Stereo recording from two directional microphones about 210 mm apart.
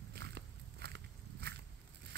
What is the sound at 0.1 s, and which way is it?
Walk, 50° right (ahead or behind).